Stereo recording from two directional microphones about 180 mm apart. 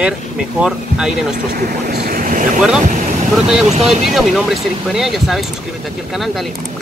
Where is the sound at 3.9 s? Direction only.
Centre (ahead or behind).